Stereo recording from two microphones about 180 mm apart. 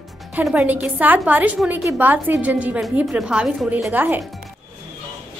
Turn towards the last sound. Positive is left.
turn(degrees=-10)  # may be behind; listen again after turning